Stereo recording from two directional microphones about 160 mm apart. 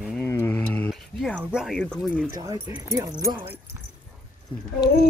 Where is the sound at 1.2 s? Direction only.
5° right (ahead or behind).